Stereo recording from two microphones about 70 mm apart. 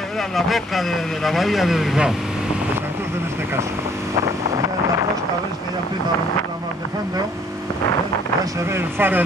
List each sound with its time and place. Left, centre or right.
0.4 s speech: centre
8.7 s speech: right